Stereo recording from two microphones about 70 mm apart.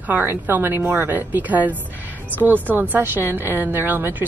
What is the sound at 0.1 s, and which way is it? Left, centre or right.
A woman's voice, right.